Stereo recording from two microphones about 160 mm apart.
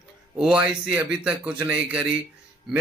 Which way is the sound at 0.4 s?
5° right (ahead or behind).